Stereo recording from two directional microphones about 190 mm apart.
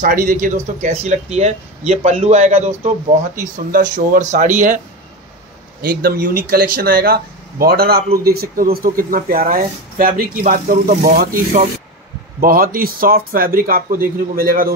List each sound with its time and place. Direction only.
0.0 s speech: 45° right (ahead or behind)